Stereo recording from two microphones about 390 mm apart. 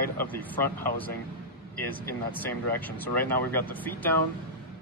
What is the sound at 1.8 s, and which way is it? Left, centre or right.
Speech, centre.